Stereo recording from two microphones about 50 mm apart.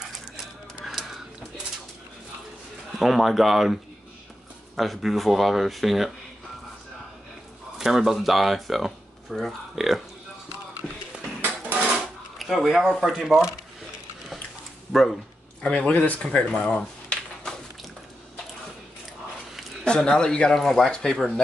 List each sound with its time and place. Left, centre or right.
0.8 s a sound: centre
3.0 s speech: centre
7.8 s speech: centre
10.8 s a sound: right
12.4 s speech: centre
14.9 s speech: centre
15.9 s speech: left
16.2 s a sound: centre
19.8 s speech: centre